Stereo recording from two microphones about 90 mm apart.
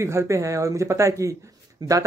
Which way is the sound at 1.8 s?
50° right (ahead or behind).